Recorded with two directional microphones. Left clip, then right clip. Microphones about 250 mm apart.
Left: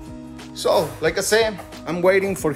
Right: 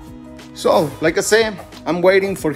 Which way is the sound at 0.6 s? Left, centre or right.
Right.